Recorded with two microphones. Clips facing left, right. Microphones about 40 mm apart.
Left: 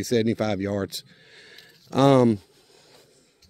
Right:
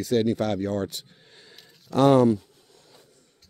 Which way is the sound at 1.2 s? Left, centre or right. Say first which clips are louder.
Left 3 dB; left.